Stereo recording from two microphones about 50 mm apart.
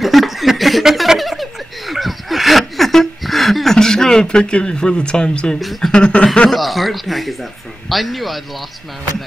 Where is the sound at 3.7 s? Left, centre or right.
Centre.